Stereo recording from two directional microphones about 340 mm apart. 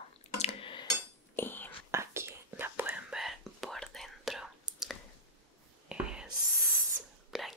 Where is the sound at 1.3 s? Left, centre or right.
Centre.